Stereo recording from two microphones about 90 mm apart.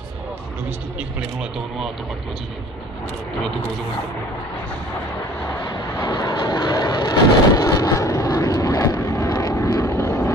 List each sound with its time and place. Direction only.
5.6 s vehicle: 45° left (ahead or behind)